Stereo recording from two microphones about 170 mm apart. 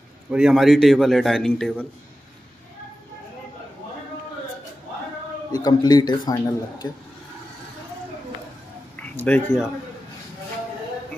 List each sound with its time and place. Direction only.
0.3 s a man's voice: centre (ahead or behind)
5.5 s a man's voice: 25° left (ahead or behind)
9.0 s speech: 10° left (ahead or behind)